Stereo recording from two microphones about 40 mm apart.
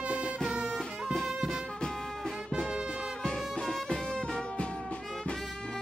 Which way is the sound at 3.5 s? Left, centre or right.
Centre.